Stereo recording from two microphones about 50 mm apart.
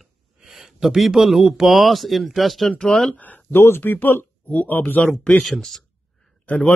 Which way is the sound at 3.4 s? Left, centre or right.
Left.